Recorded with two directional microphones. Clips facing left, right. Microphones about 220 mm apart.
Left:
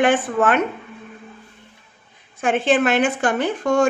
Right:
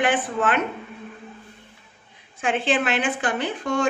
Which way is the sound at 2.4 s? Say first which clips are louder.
Left 5 dB; 45° left (ahead or behind).